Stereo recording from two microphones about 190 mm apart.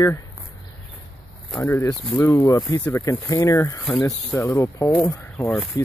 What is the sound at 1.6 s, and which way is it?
Speech, 15° left (ahead or behind).